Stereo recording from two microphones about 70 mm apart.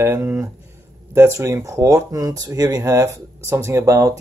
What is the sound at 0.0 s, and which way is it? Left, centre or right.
Speech, right.